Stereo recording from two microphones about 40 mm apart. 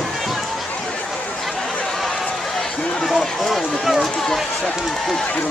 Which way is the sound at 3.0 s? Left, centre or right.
Centre.